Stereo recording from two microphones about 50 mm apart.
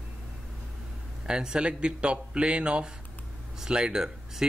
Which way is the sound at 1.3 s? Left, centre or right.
Centre.